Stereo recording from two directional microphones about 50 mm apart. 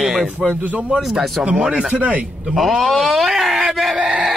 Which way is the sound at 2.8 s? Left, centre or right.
Centre.